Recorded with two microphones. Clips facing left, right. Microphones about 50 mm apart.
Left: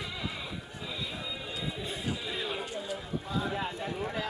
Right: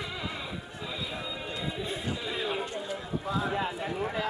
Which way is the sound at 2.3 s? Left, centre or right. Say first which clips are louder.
Right 3 dB; centre.